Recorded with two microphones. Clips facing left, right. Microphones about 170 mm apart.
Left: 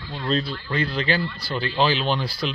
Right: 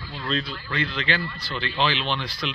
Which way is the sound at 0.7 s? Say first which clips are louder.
Left 4 dB; 35° left (ahead or behind).